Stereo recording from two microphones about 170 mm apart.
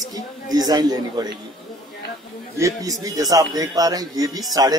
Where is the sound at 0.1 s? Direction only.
20° right (ahead or behind).